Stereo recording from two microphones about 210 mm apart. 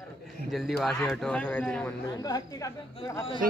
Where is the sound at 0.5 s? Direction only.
Centre (ahead or behind).